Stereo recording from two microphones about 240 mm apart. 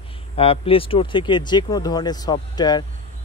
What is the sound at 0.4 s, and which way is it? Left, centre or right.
Speech, left.